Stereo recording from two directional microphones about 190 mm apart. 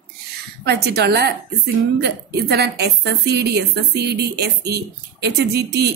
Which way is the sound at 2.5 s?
60° right (ahead or behind).